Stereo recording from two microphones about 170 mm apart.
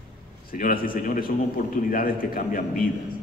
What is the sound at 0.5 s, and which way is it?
A man's voice, 55° left (ahead or behind).